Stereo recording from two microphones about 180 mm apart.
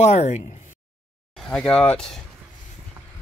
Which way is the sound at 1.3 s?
5° left (ahead or behind).